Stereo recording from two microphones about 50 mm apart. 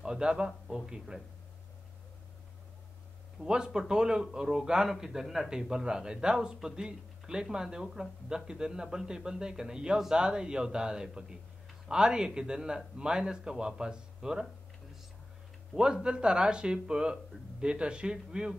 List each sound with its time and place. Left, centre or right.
0.0 s a man's voice: centre
3.4 s a man's voice: centre
15.7 s a man's voice: centre